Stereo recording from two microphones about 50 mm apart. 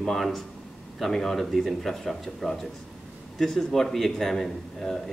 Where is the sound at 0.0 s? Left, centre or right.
Centre.